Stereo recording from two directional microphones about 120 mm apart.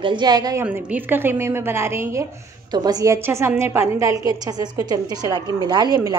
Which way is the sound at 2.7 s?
35° right (ahead or behind).